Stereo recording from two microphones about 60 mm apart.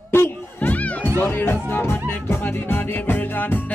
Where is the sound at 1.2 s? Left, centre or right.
Left.